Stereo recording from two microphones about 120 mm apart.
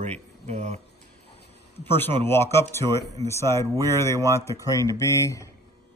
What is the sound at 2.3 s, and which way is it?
Speech, 20° left (ahead or behind).